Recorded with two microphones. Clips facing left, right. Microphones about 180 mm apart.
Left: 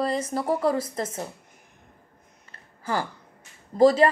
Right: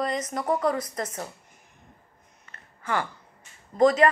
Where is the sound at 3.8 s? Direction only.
30° left (ahead or behind).